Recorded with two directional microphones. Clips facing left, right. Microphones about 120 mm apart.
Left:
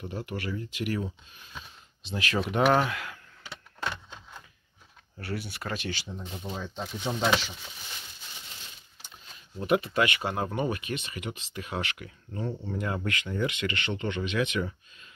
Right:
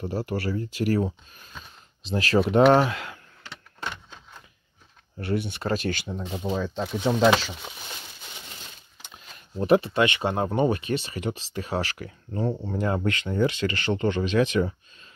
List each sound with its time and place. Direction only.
0.0 s speech: 35° right (ahead or behind)
5.2 s speech: 25° right (ahead or behind)
5.8 s speech: 55° right (ahead or behind)
6.1 s speech: 90° right
9.6 s speech: 30° right (ahead or behind)